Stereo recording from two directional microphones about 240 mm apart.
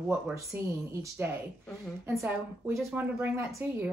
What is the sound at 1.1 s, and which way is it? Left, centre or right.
Speech, centre.